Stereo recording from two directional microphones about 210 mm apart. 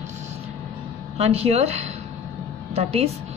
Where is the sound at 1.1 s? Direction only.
30° right (ahead or behind).